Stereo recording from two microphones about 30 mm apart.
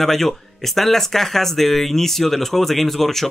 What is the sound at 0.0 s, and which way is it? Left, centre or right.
Speech, centre.